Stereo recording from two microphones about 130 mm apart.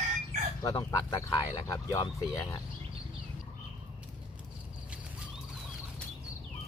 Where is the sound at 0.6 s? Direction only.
25° left (ahead or behind).